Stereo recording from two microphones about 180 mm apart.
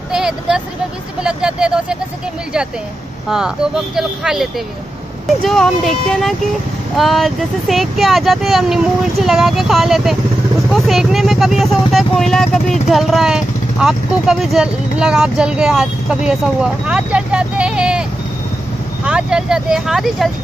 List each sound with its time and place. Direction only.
0.1 s speech: 5° right (ahead or behind)
3.3 s speech: 5° right (ahead or behind)
19.0 s speech: 5° right (ahead or behind)